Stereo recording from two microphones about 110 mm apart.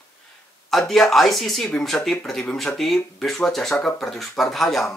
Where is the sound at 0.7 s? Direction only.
5° left (ahead or behind).